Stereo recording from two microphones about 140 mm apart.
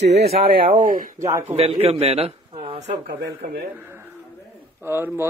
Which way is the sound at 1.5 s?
40° right (ahead or behind).